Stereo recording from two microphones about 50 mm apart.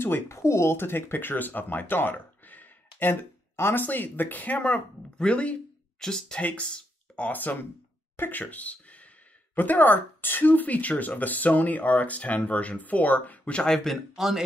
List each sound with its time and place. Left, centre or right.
0.3 s speech: left
0.7 s speech: left
3.5 s speech: left
3.8 s speech: left
4.6 s speech: left
5.9 s speech: centre
6.4 s a sound: left
7.2 s speech: left
13.6 s speech: centre
14.1 s a man's voice: centre